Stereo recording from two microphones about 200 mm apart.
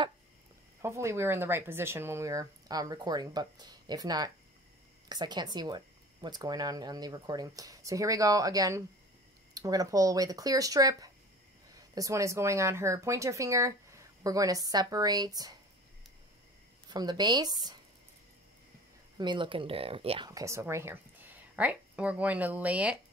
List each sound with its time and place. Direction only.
0.8 s speech: 15° right (ahead or behind)
16.9 s speech: 20° right (ahead or behind)
19.1 s speech: 25° right (ahead or behind)
20.2 s speech: 15° right (ahead or behind)